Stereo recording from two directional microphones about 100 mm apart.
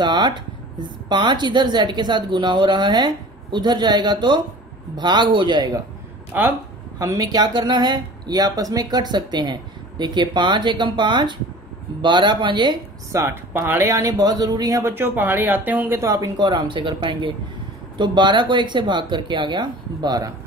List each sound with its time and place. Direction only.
0.0 s speech: 50° right (ahead or behind)
6.3 s speech: 20° right (ahead or behind)
7.0 s speech: 35° right (ahead or behind); by 12.7 s 50° right (ahead or behind)
13.1 s speech: 25° right (ahead or behind)
13.8 s speech: 35° right (ahead or behind)
16.1 s speech: 35° right (ahead or behind)
16.4 s speech: 55° right (ahead or behind)